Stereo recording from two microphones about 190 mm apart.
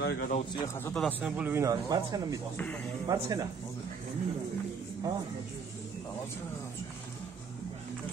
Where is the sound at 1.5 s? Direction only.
15° right (ahead or behind).